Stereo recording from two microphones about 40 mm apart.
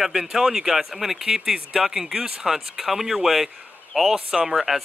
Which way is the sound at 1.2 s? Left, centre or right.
Centre.